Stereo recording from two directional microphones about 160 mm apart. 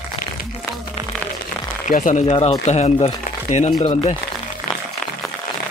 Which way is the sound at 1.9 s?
50° left (ahead or behind).